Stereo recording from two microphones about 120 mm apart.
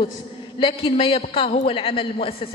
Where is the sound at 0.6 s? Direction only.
45° left (ahead or behind).